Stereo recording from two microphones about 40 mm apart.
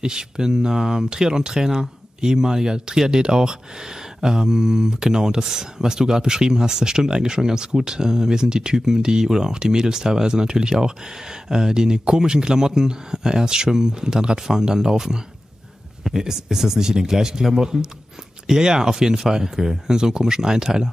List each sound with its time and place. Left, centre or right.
0.0 s speech: centre